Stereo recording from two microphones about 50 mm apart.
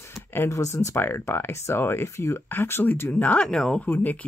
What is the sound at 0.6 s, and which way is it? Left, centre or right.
Speech, left.